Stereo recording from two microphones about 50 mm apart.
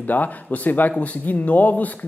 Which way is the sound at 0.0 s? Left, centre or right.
Left.